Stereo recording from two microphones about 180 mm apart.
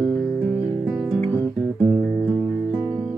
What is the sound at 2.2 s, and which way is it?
Music, 10° right (ahead or behind).